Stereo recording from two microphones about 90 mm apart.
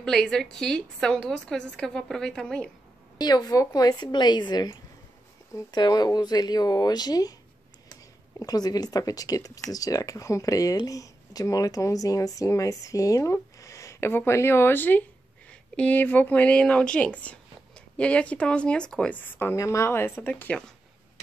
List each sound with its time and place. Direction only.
0.0 s speech: 5° left (ahead or behind)
3.2 s speech: 50° left (ahead or behind)
8.4 s speech: 45° left (ahead or behind); by 19.5 s 20° left (ahead or behind)
19.5 s speech: 35° left (ahead or behind); by 20.6 s 15° left (ahead or behind)